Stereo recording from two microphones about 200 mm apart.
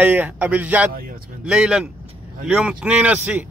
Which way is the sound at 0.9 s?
45° right (ahead or behind).